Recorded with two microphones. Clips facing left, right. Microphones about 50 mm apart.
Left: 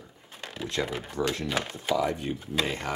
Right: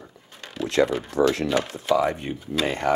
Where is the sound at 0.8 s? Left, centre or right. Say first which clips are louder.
Right 11 dB; right.